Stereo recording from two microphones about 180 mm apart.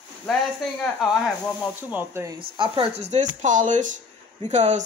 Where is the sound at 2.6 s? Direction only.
35° right (ahead or behind).